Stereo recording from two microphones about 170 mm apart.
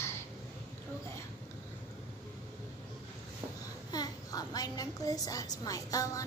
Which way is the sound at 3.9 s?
20° left (ahead or behind).